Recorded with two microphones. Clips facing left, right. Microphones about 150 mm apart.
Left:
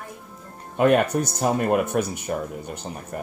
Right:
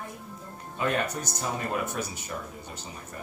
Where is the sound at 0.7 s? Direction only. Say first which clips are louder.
Left 10 dB; 60° left (ahead or behind).